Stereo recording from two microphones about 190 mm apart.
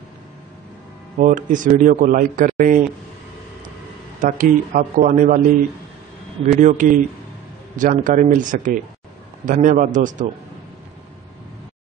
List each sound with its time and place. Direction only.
1.2 s a man's voice: 45° right (ahead or behind)
4.2 s a man's voice: 45° right (ahead or behind)